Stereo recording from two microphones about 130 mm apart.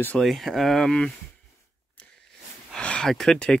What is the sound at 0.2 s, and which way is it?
Speech, centre (ahead or behind).